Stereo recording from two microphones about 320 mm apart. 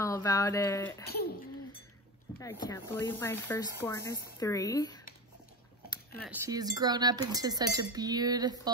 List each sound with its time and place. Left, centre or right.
0.0 s speech: centre
2.6 s speech: centre
6.2 s speech: centre